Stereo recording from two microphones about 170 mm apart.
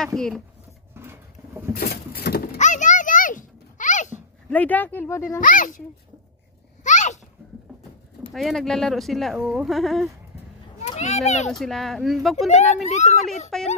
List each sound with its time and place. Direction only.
0.0 s speech: 5° left (ahead or behind)
0.9 s a sound: 15° right (ahead or behind)
1.8 s a sound: 65° left (ahead or behind)
2.5 s music: 45° left (ahead or behind)
4.5 s speech: 10° left (ahead or behind)
5.4 s speech: 50° left (ahead or behind)
6.8 s a sound: 45° left (ahead or behind)
8.3 s speech: centre (ahead or behind)
10.8 s a child's voice: 40° left (ahead or behind)
11.5 s speech: centre (ahead or behind)
12.4 s speech: 40° left (ahead or behind)
13.5 s speech: centre (ahead or behind)